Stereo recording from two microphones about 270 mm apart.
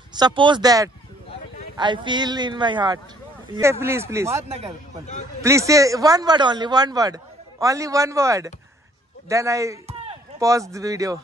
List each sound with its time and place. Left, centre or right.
0.1 s speech: centre
5.4 s speech: centre